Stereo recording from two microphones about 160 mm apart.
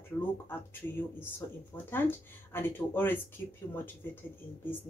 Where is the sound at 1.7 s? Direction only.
15° left (ahead or behind).